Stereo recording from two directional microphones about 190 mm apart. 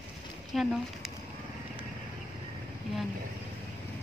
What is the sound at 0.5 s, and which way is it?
Speech, centre (ahead or behind).